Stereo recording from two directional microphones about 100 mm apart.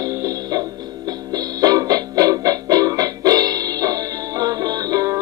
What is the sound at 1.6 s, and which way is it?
Music, 40° right (ahead or behind).